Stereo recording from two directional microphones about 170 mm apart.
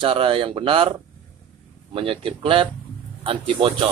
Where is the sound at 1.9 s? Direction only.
30° right (ahead or behind).